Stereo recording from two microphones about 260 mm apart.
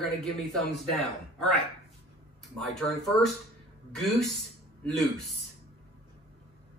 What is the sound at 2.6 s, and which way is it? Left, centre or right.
A woman's voice, centre.